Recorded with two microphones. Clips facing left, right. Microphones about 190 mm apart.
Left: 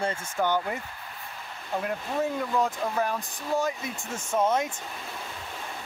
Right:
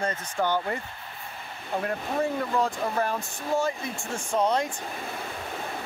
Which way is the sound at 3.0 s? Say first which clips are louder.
Right 1 dB; 15° left (ahead or behind).